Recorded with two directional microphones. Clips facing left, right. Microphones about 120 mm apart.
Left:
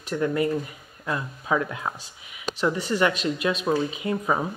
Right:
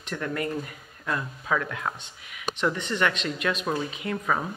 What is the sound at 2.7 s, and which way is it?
Speech, 5° left (ahead or behind).